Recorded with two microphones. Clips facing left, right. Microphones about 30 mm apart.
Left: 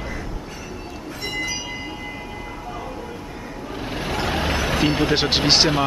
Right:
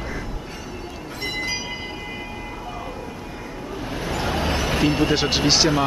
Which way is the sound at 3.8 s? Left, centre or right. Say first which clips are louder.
Left 1 dB; left.